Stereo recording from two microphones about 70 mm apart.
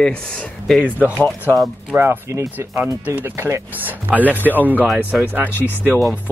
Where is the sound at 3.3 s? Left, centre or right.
Right.